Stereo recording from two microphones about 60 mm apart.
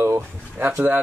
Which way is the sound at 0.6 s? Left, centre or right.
Right.